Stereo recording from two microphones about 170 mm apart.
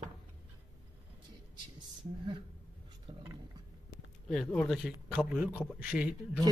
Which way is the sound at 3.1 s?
30° right (ahead or behind).